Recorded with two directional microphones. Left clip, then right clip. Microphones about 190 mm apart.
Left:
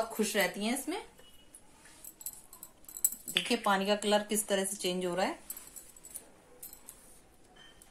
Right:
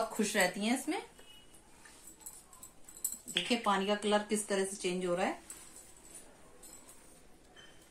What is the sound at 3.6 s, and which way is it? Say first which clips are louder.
Speech: left 2 dB; 50° left (ahead or behind).